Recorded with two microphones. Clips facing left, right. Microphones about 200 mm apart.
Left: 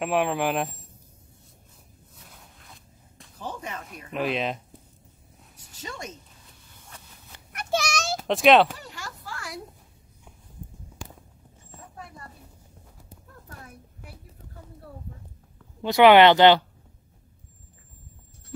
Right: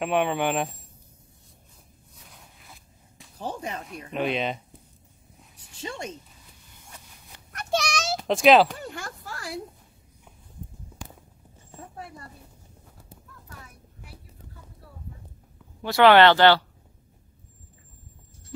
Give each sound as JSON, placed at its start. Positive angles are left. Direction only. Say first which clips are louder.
{"t": 0.0, "sound": "speech", "louder": "even", "side_deg": 0}
{"t": 3.3, "sound": "speech", "louder": "right 3 dB", "side_deg": -30}
{"t": 4.1, "sound": "speech", "louder": "even", "side_deg": 0}
{"t": 5.8, "sound": "speech", "louder": "right 3 dB", "side_deg": -30}
{"t": 7.5, "sound": "children playing", "louder": "even", "side_deg": 0}
{"t": 8.7, "sound": "a sound", "louder": "right 4 dB", "side_deg": -55}
{"t": 15.8, "sound": "speech", "louder": "left 2 dB", "side_deg": 15}